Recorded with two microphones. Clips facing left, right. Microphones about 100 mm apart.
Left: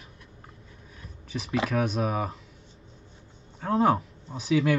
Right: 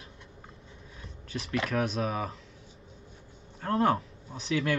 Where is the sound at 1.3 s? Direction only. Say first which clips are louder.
Left 3 dB; centre (ahead or behind).